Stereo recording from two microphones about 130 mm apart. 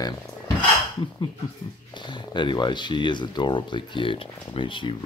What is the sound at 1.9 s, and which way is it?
A man's voice, 35° left (ahead or behind).